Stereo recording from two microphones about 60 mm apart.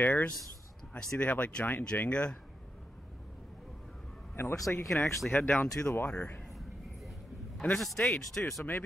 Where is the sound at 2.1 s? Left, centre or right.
Centre.